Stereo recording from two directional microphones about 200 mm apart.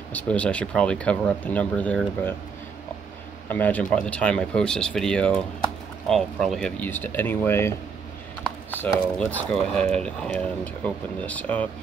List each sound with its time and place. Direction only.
0.1 s speech: 5° left (ahead or behind)
3.4 s speech: 10° left (ahead or behind)